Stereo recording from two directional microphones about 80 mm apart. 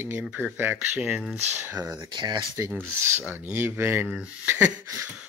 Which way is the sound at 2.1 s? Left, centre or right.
Right.